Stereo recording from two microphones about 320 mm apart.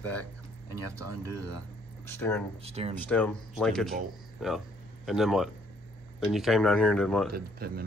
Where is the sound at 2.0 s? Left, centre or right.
Centre.